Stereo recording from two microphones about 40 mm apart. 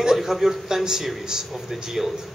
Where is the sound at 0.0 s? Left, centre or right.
Centre.